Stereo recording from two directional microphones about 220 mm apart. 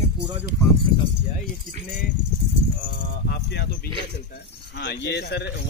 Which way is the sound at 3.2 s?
45° left (ahead or behind).